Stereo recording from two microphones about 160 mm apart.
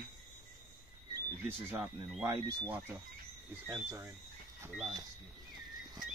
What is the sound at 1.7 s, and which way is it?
Speech, 5° right (ahead or behind).